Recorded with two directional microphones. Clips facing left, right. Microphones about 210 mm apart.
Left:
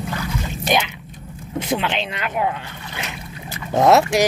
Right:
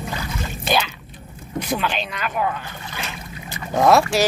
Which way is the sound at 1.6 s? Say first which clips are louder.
Left 2 dB; 25° left (ahead or behind).